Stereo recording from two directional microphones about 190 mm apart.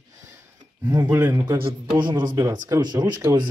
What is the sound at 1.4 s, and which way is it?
Speech, 25° right (ahead or behind).